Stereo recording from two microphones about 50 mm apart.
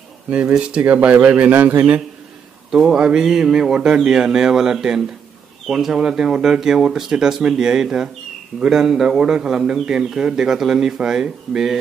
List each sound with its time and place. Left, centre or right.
0.3 s speech: right
2.7 s speech: centre